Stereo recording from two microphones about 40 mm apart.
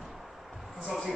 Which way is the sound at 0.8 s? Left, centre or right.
Centre.